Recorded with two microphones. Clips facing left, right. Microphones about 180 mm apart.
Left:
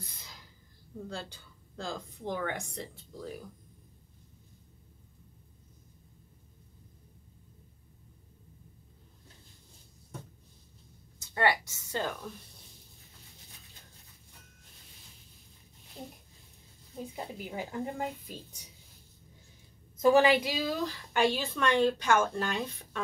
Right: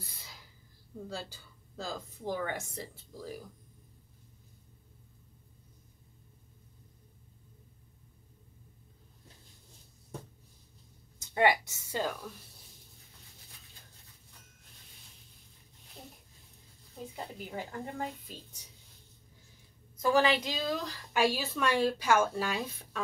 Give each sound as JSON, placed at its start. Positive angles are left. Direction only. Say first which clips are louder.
{"t": 0.0, "sound": "a sound", "louder": "left 2 dB", "side_deg": 0}
{"t": 1.0, "sound": "a woman's voice", "louder": "even", "side_deg": -5}
{"t": 11.3, "sound": "a woman's voice", "louder": "right 2 dB", "side_deg": -10}
{"t": 17.1, "sound": "speech", "louder": "even", "side_deg": 15}
{"t": 20.0, "sound": "speech", "louder": "left 4 dB", "side_deg": 20}
{"t": 20.5, "sound": "a woman's voice", "louder": "left 2 dB", "side_deg": 0}